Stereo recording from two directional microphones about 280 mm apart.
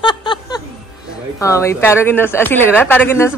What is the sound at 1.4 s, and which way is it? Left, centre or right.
A woman's voice, centre.